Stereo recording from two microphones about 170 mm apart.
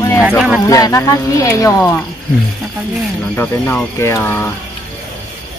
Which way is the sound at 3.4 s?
10° left (ahead or behind).